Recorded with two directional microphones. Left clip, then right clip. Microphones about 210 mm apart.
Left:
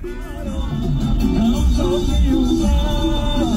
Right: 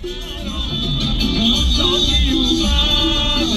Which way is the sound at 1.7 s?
25° right (ahead or behind).